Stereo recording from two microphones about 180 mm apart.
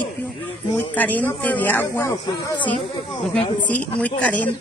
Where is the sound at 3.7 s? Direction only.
10° left (ahead or behind).